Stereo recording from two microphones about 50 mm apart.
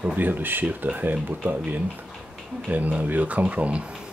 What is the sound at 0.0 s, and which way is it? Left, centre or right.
Speech, right.